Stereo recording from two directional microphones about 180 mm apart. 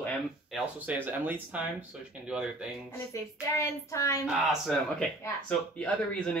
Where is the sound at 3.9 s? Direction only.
15° left (ahead or behind).